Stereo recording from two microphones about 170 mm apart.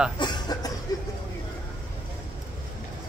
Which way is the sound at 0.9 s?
20° left (ahead or behind).